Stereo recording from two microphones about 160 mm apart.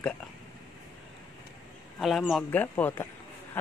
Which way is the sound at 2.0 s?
Centre (ahead or behind).